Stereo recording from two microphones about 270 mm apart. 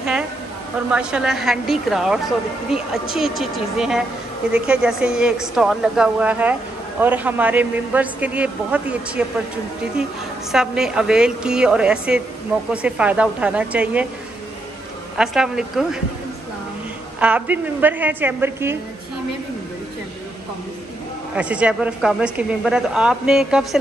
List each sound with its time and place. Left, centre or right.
0.9 s speech: centre
10.5 s speech: centre
15.1 s speech: centre
17.2 s a woman's voice: centre
21.4 s speech: centre